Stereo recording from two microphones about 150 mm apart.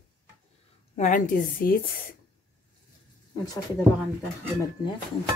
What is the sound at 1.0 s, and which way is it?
Speech, 60° left (ahead or behind).